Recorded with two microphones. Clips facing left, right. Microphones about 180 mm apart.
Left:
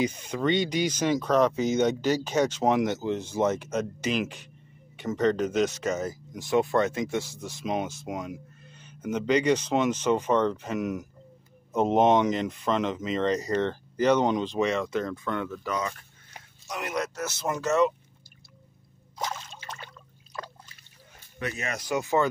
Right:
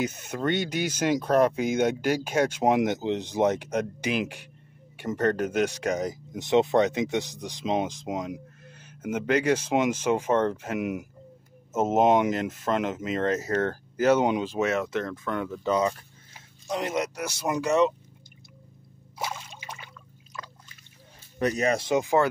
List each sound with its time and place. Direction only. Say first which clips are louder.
0.0 s speech: left 1 dB; 5° right (ahead or behind)
5.4 s speech: even; 60° right (ahead or behind)
5.7 s speech: right 1 dB; 15° right (ahead or behind)
15.6 s speech: right 6 dB; 30° right (ahead or behind)
19.1 s a sound: even; 10° right (ahead or behind)
21.4 s speech: right 9 dB; 40° right (ahead or behind); by 22.3 s 15° right (ahead or behind)